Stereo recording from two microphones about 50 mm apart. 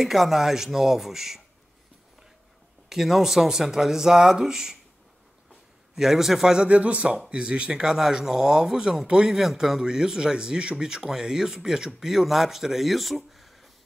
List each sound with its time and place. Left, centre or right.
0.0 s speech: centre
2.9 s speech: centre
5.9 s speech: centre
6.7 s speech: right; by 13.5 s centre